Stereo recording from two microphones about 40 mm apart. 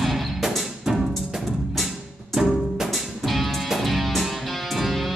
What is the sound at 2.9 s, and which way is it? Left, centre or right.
Music, centre.